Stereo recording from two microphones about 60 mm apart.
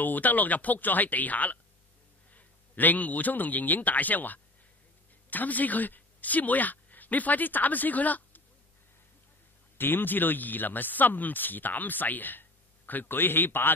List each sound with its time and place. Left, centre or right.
0.0 s a man's voice: left
9.8 s speech: left